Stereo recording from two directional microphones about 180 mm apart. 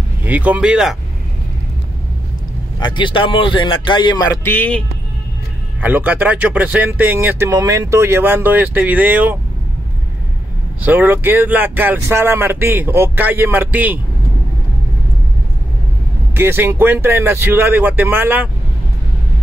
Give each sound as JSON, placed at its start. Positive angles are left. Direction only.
{"t": 0.2, "sound": "a man's voice", "side_deg": -10}
{"t": 2.8, "sound": "a man's voice", "side_deg": 25}
{"t": 4.5, "sound": "speech", "side_deg": 10}
{"t": 5.8, "sound": "a man's voice", "side_deg": -10}
{"t": 10.9, "sound": "a man's voice", "side_deg": -10}
{"t": 16.3, "sound": "a man's voice", "side_deg": -10}